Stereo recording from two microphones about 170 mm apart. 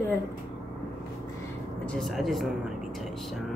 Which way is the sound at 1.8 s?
5° left (ahead or behind).